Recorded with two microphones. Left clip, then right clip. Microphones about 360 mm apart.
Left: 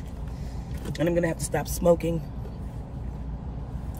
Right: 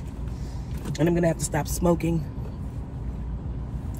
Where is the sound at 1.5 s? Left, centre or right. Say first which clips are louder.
Left 3 dB; centre.